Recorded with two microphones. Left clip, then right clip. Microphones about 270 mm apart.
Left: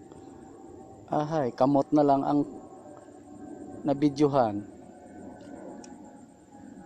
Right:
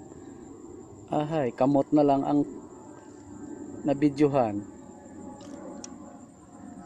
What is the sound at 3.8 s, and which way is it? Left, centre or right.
Speech, centre.